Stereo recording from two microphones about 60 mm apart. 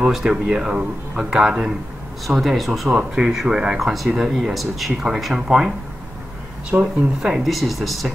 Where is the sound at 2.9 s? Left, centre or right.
Centre.